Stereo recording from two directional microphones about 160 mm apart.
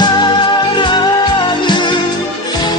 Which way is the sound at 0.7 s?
30° left (ahead or behind).